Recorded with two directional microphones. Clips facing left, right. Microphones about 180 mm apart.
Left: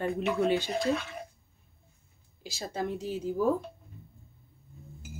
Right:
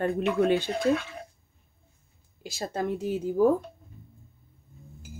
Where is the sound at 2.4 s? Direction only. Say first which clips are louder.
Right 4 dB; 55° right (ahead or behind).